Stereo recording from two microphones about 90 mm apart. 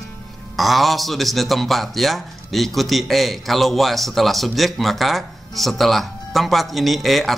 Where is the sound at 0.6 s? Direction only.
Centre (ahead or behind).